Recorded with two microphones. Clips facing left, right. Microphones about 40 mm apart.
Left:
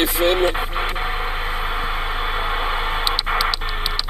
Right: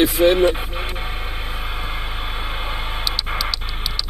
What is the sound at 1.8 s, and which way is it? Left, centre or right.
Vehicle, centre.